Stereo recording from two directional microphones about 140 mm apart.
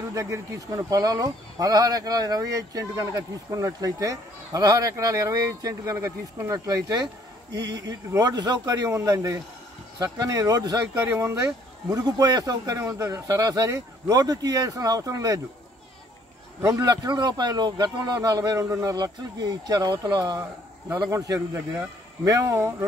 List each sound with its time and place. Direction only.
0.1 s speech: 20° right (ahead or behind)
16.6 s speech: 25° right (ahead or behind)